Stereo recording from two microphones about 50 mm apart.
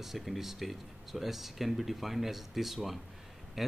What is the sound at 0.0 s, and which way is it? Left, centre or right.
Speech, centre.